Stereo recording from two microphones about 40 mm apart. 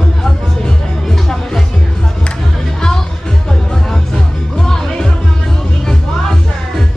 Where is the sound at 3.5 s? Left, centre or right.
Centre.